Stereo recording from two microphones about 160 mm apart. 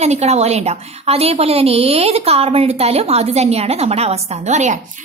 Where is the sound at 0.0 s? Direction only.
45° right (ahead or behind).